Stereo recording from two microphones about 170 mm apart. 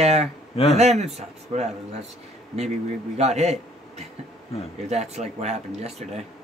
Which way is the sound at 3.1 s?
40° right (ahead or behind).